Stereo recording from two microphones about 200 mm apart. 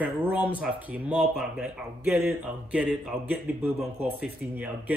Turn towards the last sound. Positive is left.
turn(degrees=-5)  # may be behind; listen again after turning